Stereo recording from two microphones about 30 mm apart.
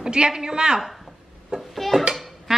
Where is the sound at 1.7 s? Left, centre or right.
Centre.